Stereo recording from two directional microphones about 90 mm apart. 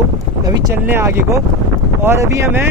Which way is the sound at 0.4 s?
45° right (ahead or behind).